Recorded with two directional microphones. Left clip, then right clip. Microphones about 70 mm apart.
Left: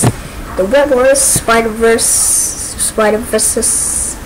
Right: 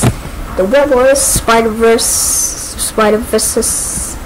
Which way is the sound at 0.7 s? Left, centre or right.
Centre.